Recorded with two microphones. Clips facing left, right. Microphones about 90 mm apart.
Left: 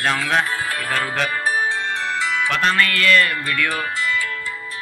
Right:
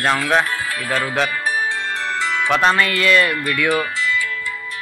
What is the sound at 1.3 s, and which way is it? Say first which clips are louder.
Music: even; 35° left (ahead or behind).